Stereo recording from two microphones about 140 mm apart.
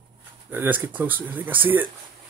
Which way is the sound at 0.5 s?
15° right (ahead or behind).